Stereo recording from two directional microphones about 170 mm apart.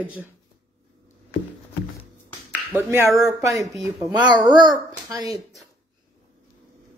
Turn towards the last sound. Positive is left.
turn(degrees=-20)  # may be behind; listen again after turning